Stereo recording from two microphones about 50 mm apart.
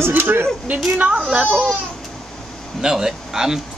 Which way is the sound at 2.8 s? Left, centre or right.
Centre.